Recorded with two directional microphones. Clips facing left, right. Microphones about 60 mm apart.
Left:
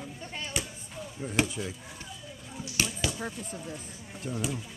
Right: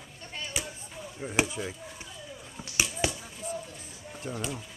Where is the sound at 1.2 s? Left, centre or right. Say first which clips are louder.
Even; centre.